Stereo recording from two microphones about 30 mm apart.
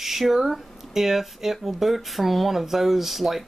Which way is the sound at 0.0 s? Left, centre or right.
Centre.